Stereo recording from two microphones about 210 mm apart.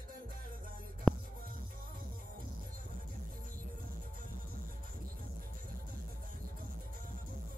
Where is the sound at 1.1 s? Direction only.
Centre (ahead or behind).